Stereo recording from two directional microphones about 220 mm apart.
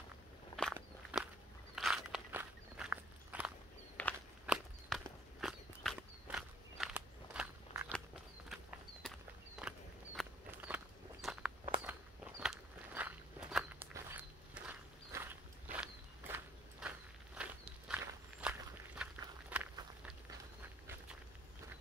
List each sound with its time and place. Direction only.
1.1 s walk: 5° right (ahead or behind)
4.0 s walk: 5° left (ahead or behind)
8.5 s horse: centre (ahead or behind)
9.6 s walk: 5° right (ahead or behind)
16.8 s vehicle: 5° right (ahead or behind)
17.4 s walk: 5° right (ahead or behind)